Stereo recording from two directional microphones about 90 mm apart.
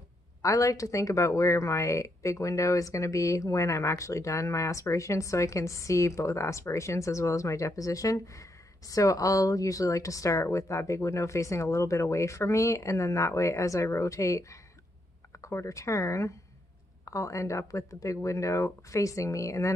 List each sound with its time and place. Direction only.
0.4 s speech: 40° left (ahead or behind)